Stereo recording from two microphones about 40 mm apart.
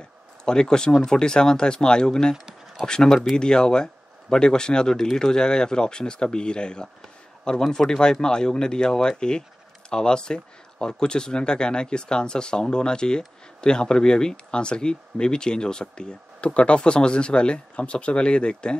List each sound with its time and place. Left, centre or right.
0.5 s speech: centre